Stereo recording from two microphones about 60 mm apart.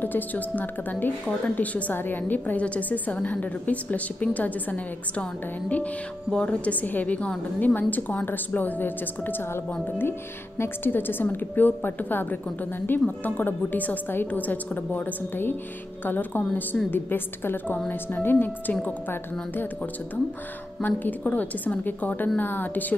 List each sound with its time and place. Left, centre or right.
0.0 s a woman's voice: left
20.8 s a woman's voice: left